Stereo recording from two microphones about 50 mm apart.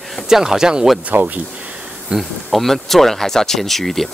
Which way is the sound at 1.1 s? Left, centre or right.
Right.